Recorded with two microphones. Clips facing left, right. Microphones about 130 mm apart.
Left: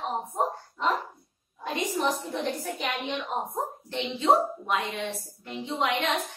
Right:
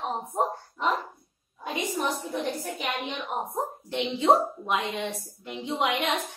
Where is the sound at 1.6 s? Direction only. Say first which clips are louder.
Left 1 dB; 10° right (ahead or behind).